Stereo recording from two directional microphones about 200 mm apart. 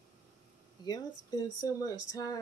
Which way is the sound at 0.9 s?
20° left (ahead or behind).